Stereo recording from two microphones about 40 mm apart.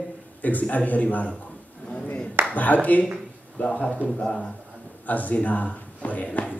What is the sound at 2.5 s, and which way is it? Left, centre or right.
A man's voice, left.